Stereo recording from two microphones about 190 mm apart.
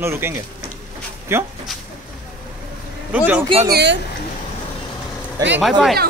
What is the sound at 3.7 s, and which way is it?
Speech, 65° right (ahead or behind).